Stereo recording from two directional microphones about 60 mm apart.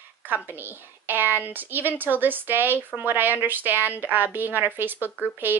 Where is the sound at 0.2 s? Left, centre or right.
Right.